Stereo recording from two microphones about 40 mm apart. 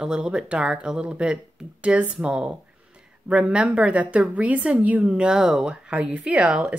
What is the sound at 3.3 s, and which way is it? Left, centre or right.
Speech, right.